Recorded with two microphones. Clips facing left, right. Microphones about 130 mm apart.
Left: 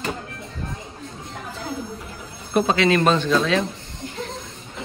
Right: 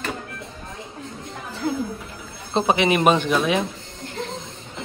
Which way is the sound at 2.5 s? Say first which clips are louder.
Left 1 dB; 20° right (ahead or behind).